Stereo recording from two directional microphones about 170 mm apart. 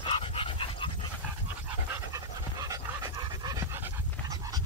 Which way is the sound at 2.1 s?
20° right (ahead or behind).